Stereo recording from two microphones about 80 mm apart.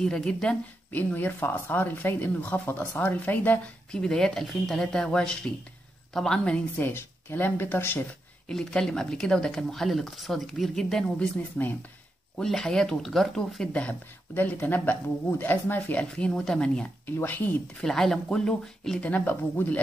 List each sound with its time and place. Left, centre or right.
0.0 s speech: centre
1.1 s speech: left
3.9 s speech: centre
6.8 s speech: left
8.5 s speech: centre
12.4 s speech: centre
13.7 s speech: centre
17.0 s speech: left
17.7 s speech: centre; by 19.8 s left